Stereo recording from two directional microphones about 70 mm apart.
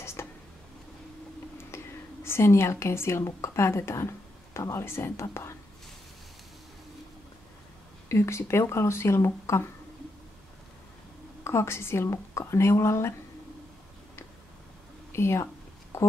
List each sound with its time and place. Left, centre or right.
0.0 s a sound: left
1.7 s whispering: left
2.2 s a woman's voice: left
8.1 s a woman's voice: left
11.4 s a woman's voice: left
15.1 s a sound: left